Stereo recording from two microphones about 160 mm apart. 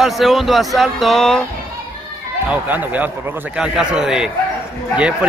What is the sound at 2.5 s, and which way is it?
A man's voice, 10° right (ahead or behind).